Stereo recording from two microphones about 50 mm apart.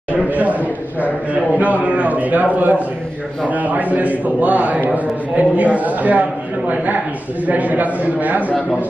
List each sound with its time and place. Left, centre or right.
0.1 s a sound: right
1.3 s a man's voice: right
7.4 s a man's voice: right